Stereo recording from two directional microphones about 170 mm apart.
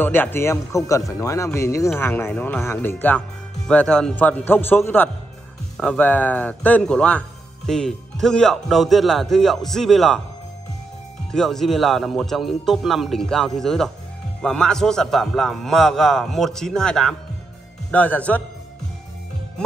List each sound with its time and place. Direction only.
0.0 s speech: 10° left (ahead or behind)
11.3 s speech: centre (ahead or behind)